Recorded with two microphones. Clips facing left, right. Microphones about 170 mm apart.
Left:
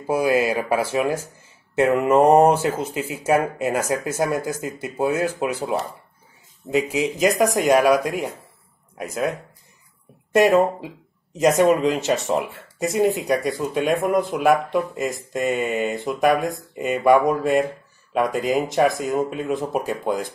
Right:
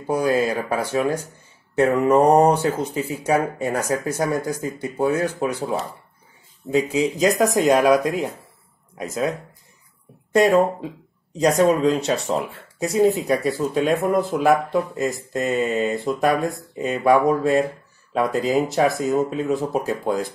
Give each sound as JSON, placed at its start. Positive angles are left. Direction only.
{"t": 0.0, "sound": "speech", "side_deg": 10}
{"t": 7.3, "sound": "speech", "side_deg": 15}
{"t": 7.7, "sound": "speech", "side_deg": 5}
{"t": 10.3, "sound": "speech", "side_deg": 5}